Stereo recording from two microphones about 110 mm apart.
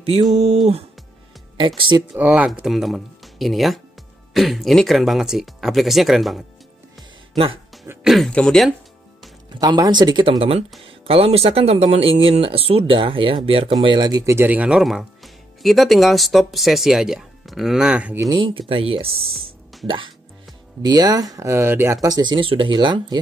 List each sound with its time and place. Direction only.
0.3 s a sound: 70° right (ahead or behind)
1.6 s speech: 50° right (ahead or behind)
2.1 s speech: 10° right (ahead or behind)
8.0 s speech: centre (ahead or behind)
9.6 s speech: 40° right (ahead or behind)
11.1 s speech: 65° right (ahead or behind)
13.9 s speech: 40° right (ahead or behind)
14.3 s speech: 15° right (ahead or behind)
14.8 s speech: centre (ahead or behind)
18.3 s speech: 45° right (ahead or behind)
18.7 s speech: 60° right (ahead or behind)
20.8 s speech: 35° right (ahead or behind)